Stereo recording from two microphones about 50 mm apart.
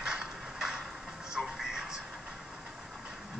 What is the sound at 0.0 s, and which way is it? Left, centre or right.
Mechanisms, centre.